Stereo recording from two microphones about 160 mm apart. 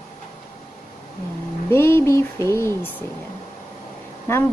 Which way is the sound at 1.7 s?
15° left (ahead or behind).